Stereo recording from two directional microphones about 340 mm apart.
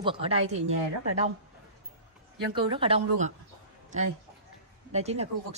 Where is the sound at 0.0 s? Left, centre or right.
Centre.